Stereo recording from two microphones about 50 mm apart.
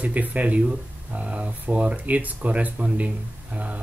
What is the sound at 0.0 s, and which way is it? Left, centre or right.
Speech, right.